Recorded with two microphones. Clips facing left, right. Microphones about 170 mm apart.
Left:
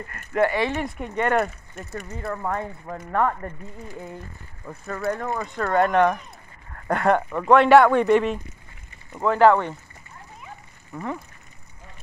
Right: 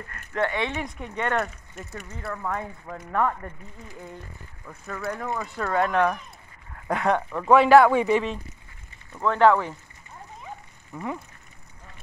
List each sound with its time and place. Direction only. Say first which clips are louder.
0.1 s speech: left 5 dB; 5° left (ahead or behind)
2.2 s speech: left 3 dB; 15° left (ahead or behind)
2.8 s speech: left 2 dB; 5° left (ahead or behind)
4.6 s speech: left 6 dB; 25° left (ahead or behind)
5.0 s speech: left 4 dB; centre (ahead or behind)
10.9 s speech: left 1 dB; centre (ahead or behind)